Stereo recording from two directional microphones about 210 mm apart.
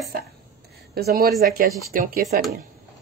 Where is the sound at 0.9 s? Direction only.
45° right (ahead or behind).